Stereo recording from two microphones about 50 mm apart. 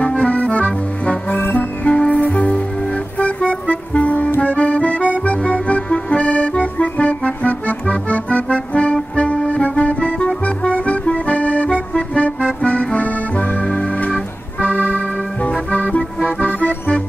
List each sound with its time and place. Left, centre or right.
0.2 s accordion: left
1.6 s music: left
4.4 s accordion: left
14.6 s keyboard: left
15.7 s music: left